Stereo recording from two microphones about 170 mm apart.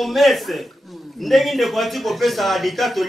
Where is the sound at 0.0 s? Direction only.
Centre (ahead or behind).